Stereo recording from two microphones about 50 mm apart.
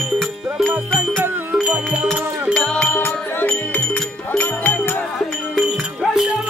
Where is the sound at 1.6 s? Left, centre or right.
Right.